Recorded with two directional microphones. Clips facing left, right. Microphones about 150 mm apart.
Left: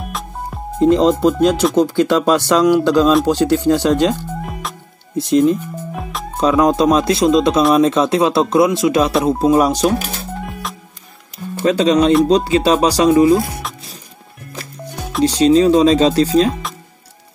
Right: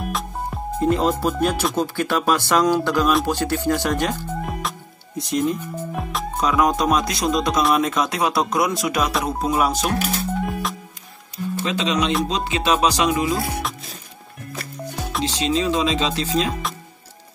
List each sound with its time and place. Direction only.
0.1 s music: centre (ahead or behind)
0.7 s speech: 20° left (ahead or behind)
4.4 s music: centre (ahead or behind)
5.1 s speech: 25° left (ahead or behind)
6.0 s music: centre (ahead or behind)
6.3 s speech: 25° left (ahead or behind)
11.6 s speech: 40° left (ahead or behind)
13.6 s music: centre (ahead or behind)
15.4 s speech: 40° left (ahead or behind)